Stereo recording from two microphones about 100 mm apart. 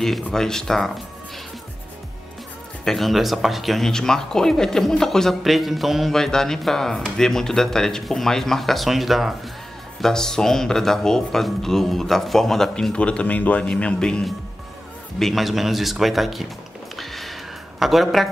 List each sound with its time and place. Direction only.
0.0 s speech: 5° left (ahead or behind)
2.8 s speech: centre (ahead or behind)
16.9 s a sound: centre (ahead or behind)